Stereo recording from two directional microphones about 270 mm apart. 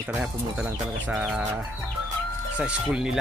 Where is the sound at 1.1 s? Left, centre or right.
Centre.